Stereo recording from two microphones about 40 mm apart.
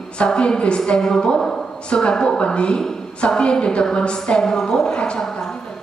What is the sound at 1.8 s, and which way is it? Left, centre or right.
A woman's voice, left.